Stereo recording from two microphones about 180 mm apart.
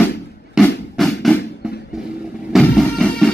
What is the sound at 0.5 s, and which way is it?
Music, centre (ahead or behind).